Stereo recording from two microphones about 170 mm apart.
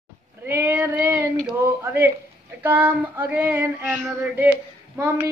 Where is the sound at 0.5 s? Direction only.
15° right (ahead or behind).